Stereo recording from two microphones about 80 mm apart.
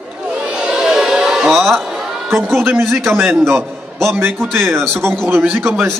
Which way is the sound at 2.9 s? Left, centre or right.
Right.